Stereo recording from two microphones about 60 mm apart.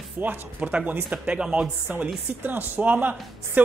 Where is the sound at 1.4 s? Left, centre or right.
Centre.